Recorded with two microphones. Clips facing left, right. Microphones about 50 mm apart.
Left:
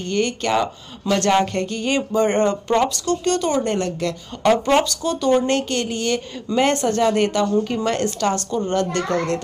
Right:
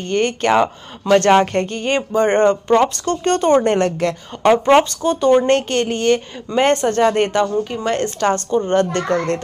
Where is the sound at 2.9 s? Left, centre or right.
Right.